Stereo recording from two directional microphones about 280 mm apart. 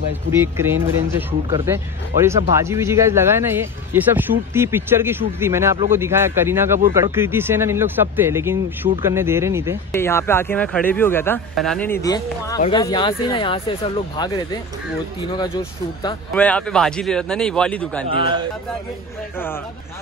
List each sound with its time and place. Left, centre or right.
0.4 s speech: centre
9.9 s speech: centre
18.1 s speech: centre